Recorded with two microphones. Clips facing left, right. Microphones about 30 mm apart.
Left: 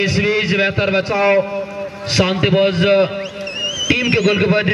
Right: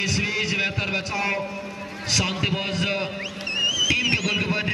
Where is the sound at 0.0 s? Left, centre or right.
Left.